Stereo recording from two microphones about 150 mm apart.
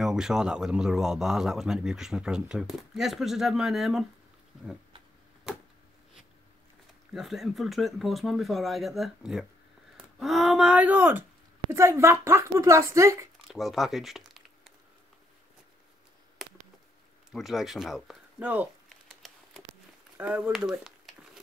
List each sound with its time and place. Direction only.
0.0 s speech: 5° right (ahead or behind)
7.2 s speech: centre (ahead or behind); by 13.3 s 20° right (ahead or behind)
13.5 s crumpling: centre (ahead or behind)
16.4 s a sound: centre (ahead or behind)
17.3 s speech: centre (ahead or behind)
18.9 s a sound: centre (ahead or behind)
20.2 s speech: 10° right (ahead or behind)